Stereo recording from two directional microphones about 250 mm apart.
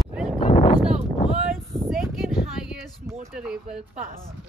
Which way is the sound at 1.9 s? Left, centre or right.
Centre.